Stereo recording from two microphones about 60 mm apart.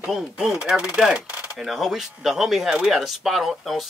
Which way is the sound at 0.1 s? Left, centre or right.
Centre.